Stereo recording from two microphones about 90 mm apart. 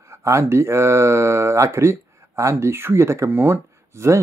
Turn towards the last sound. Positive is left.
turn(degrees=-30)  # may be behind; listen again after turning